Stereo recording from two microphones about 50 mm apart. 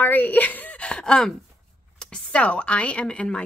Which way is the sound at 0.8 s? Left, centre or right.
Centre.